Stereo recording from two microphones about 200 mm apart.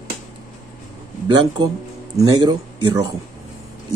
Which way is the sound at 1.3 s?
25° right (ahead or behind).